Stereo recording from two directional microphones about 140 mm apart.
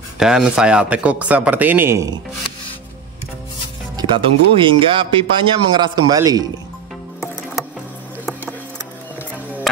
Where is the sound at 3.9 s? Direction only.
35° right (ahead or behind).